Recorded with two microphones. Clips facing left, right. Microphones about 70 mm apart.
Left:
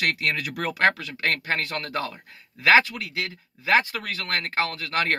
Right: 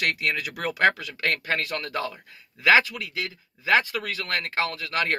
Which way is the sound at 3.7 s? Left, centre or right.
Left.